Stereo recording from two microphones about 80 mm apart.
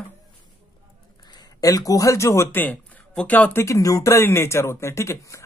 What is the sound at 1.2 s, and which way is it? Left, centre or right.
Speech, left.